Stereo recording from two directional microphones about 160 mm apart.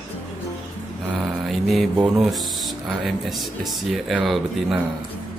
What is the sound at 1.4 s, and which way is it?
Speech, centre (ahead or behind).